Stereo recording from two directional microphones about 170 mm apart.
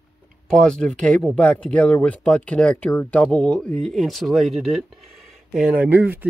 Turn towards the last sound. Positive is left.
turn(degrees=-10)  # may be behind; listen again after turning